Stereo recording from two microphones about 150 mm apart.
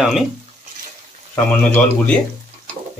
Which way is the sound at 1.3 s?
10° left (ahead or behind).